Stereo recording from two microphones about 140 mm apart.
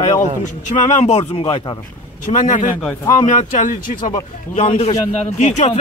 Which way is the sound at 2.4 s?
65° left (ahead or behind).